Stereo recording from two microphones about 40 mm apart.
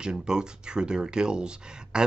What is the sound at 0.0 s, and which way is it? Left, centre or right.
Speech, centre.